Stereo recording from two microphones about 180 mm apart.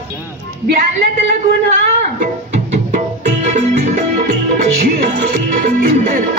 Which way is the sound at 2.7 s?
40° right (ahead or behind).